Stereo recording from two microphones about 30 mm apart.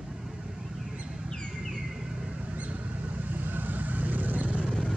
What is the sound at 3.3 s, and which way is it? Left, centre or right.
Vehicle, right.